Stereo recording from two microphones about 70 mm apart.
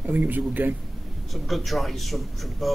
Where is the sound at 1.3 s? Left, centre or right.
Centre.